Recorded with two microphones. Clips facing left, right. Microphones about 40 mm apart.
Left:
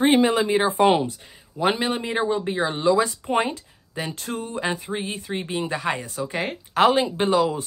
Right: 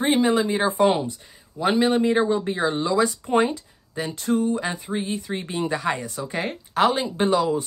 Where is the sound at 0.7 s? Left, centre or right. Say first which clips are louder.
Left 1 dB; left.